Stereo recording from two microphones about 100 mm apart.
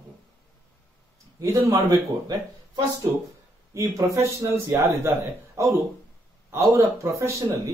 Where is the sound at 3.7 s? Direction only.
30° right (ahead or behind).